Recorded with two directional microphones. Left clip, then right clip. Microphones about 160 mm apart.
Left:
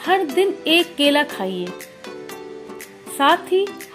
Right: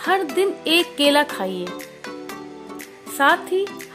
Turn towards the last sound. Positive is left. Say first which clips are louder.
# left 3 dB
turn(degrees=-40)  # may be behind; listen again after turning